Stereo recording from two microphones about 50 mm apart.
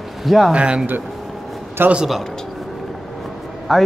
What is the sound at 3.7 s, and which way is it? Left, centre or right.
Speech, centre.